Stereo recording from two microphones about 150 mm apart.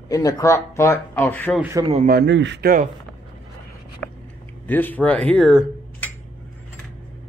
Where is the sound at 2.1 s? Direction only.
85° right.